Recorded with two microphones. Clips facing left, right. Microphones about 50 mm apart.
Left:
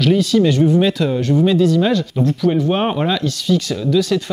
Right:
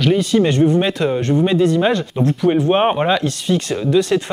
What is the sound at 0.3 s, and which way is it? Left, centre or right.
Speech, right.